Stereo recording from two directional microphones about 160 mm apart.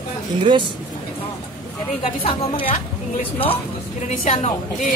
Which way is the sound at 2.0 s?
35° left (ahead or behind).